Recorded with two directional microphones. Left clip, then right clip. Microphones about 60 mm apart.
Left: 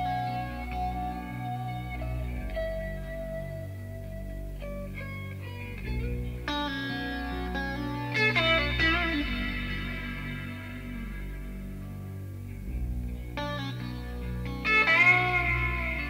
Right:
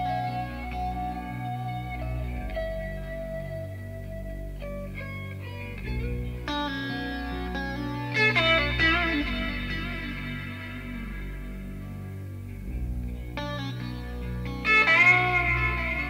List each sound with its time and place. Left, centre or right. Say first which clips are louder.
0.0 s music: right 2 dB; right
5.9 s music: right 2 dB; right
6.4 s music: right 1 dB; right
9.2 s music: right 2 dB; right
13.4 s music: even; right
14.4 s music: right 3 dB; right